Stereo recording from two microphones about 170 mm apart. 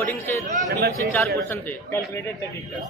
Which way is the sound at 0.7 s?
70° right (ahead or behind).